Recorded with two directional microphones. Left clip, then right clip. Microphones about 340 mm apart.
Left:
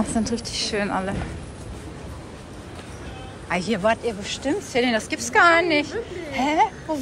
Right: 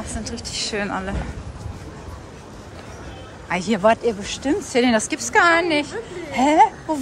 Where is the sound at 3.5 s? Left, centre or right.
Centre.